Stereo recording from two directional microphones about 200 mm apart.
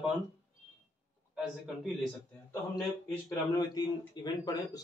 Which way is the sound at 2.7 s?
15° left (ahead or behind).